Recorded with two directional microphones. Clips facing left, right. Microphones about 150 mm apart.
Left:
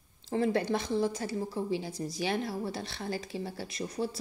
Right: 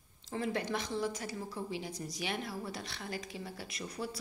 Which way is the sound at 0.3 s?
30° left (ahead or behind).